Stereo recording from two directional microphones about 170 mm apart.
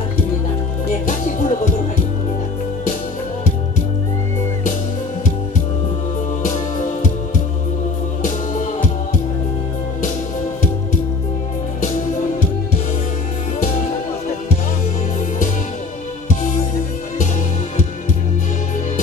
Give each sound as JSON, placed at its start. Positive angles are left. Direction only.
{"t": 1.0, "sound": "music", "side_deg": 45}